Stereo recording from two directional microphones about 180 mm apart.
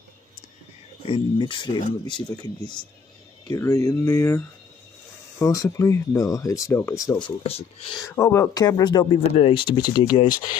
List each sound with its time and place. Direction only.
1.0 s speech: 30° left (ahead or behind)
5.4 s speech: 20° left (ahead or behind)
8.2 s speech: 15° left (ahead or behind)